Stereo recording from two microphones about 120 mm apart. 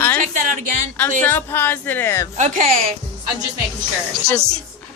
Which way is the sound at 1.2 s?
15° left (ahead or behind).